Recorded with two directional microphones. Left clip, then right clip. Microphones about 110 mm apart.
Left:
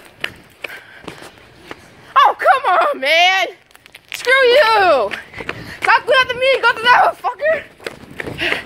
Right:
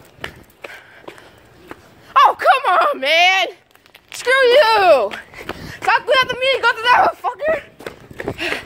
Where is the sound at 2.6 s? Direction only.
Centre (ahead or behind).